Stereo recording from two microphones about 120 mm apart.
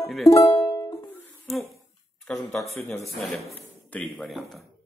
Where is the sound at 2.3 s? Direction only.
10° left (ahead or behind).